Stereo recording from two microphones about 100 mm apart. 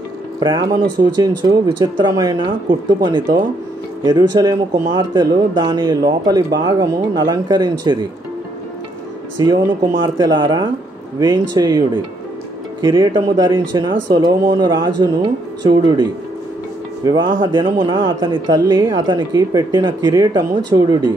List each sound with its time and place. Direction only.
0.4 s speech: 40° right (ahead or behind)
9.4 s speech: 45° right (ahead or behind)
10.4 s speech: 55° right (ahead or behind)
11.1 s speech: 40° right (ahead or behind)
12.8 s speech: 30° right (ahead or behind); by 18.4 s 50° right (ahead or behind)
18.5 s speech: 35° right (ahead or behind)